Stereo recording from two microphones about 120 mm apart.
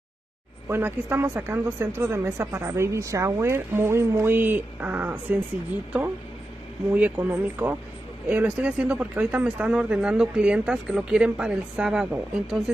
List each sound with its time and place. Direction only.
0.7 s speech: 20° right (ahead or behind)
6.9 s speech: 15° right (ahead or behind)